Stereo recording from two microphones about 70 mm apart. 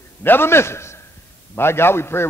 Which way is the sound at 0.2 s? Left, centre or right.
Left.